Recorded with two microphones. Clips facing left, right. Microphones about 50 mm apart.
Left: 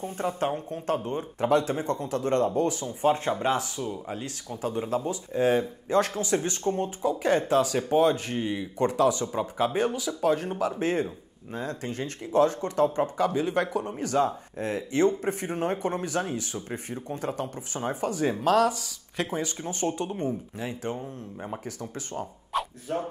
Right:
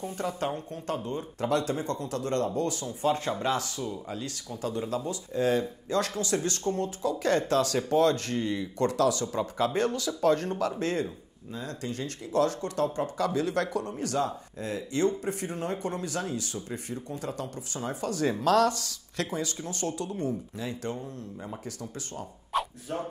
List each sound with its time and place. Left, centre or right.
0.0 s speech: left
11.6 s speech: left
14.2 s speech: left
18.1 s speech: centre
19.3 s speech: left
22.5 s a sound: centre